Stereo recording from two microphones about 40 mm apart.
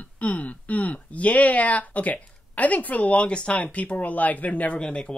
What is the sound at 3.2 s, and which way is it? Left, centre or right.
Speech, left.